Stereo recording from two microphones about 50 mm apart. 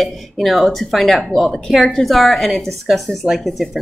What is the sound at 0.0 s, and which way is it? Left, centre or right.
Speech, centre.